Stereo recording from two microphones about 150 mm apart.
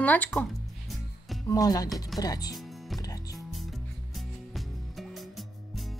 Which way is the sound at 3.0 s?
25° left (ahead or behind).